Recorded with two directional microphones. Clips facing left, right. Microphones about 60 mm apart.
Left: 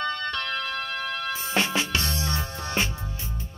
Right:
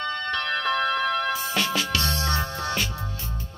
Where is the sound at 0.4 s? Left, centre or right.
Right.